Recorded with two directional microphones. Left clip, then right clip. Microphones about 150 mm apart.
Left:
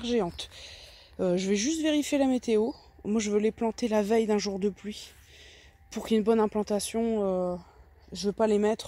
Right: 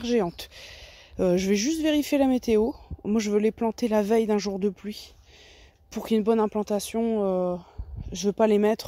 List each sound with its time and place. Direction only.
0.0 s speech: 35° right (ahead or behind)